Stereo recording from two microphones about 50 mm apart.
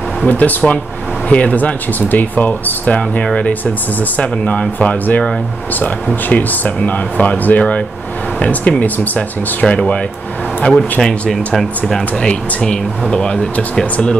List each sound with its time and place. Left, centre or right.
0.3 s speech: left
6.2 s speech: left
9.6 s speech: centre
12.2 s speech: left